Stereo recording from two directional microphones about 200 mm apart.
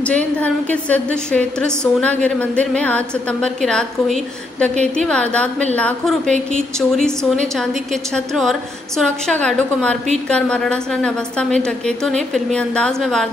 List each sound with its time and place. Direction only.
0.1 s a woman's voice: 5° left (ahead or behind)
8.4 s a woman's voice: centre (ahead or behind)